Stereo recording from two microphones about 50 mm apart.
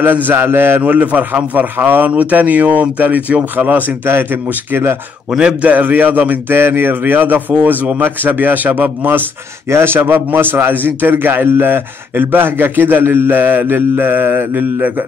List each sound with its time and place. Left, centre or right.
0.0 s a man's voice: right
4.1 s a man's voice: right
5.4 s a man's voice: centre
5.7 s a man's voice: right
6.5 s a man's voice: right
9.7 s a man's voice: right
9.9 s a man's voice: right